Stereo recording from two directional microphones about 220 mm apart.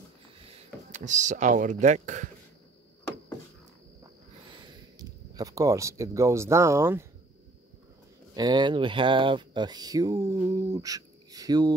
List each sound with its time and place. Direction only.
0.4 s speech: 25° right (ahead or behind)
4.0 s a sound: 20° right (ahead or behind)
8.4 s speech: 20° right (ahead or behind)